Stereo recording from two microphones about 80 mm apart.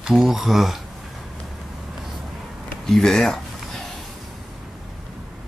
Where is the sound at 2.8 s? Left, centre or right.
Centre.